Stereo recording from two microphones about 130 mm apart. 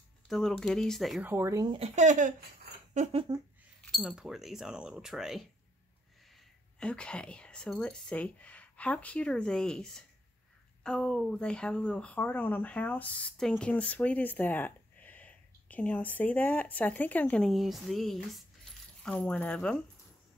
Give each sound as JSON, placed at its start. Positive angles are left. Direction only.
{"t": 0.3, "sound": "speech", "side_deg": 5}
{"t": 1.2, "sound": "speech", "side_deg": -20}
{"t": 2.0, "sound": "speech", "side_deg": -70}
{"t": 3.8, "sound": "speech", "side_deg": 0}